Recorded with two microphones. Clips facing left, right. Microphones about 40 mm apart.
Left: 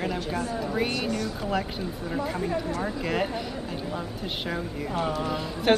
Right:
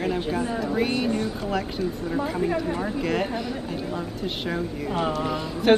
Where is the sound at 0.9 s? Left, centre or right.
Right.